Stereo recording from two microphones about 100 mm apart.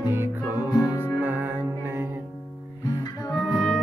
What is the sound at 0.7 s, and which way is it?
Music, 40° left (ahead or behind).